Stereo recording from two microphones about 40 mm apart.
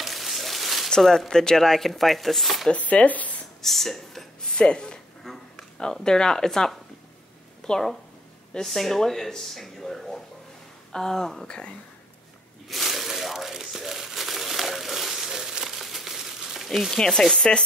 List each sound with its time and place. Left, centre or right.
0.0 s a sound: centre
0.8 s chopping: centre
2.7 s speech: left
3.6 s chopping: centre
4.5 s speech: left
5.2 s a sound: centre
6.0 s speech: centre
8.6 s speech: centre; by 11.7 s left
12.6 s crumpling: centre
16.4 s a sound: centre
17.0 s speech: centre